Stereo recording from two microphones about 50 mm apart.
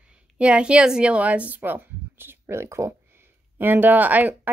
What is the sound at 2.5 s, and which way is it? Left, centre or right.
Speech, right.